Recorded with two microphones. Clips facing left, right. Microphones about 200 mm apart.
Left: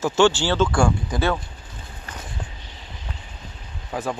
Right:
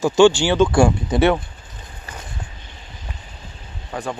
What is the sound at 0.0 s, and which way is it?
Speech, 15° right (ahead or behind).